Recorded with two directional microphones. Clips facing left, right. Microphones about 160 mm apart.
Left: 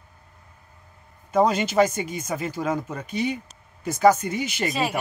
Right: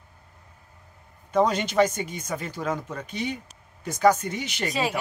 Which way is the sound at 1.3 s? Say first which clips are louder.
Left 2 dB; 5° left (ahead or behind).